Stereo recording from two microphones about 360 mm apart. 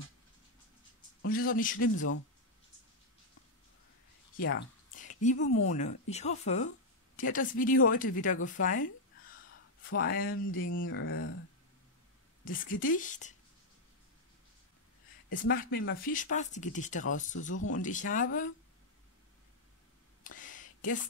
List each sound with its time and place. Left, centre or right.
1.2 s speech: left
4.4 s a sound: left
5.7 s speech: centre
9.8 s speech: left
12.4 s speech: left
15.3 s speech: left
17.6 s speech: left
17.8 s speech: left
20.2 s a sound: left